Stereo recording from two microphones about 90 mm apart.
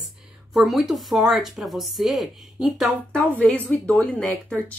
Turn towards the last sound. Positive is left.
turn(degrees=10)  # may be behind; listen again after turning